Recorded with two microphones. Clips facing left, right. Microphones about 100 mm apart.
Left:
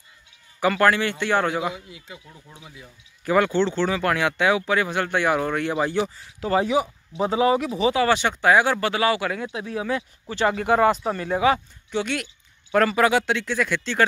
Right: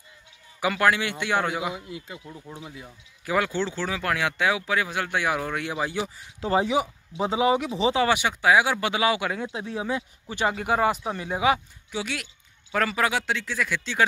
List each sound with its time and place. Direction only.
0.6 s speech: 10° right (ahead or behind)
3.3 s speech: 5° right (ahead or behind)
6.4 s speech: 25° right (ahead or behind)
8.1 s speech: 10° right (ahead or behind)
8.8 s speech: 15° right (ahead or behind)
10.3 s speech: 10° right (ahead or behind)